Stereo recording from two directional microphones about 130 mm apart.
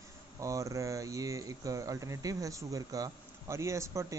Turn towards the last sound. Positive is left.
turn(degrees=-25)  # may be behind; listen again after turning